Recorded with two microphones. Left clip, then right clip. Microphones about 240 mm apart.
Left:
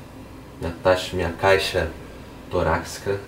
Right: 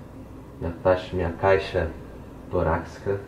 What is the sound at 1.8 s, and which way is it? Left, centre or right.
Speech, centre.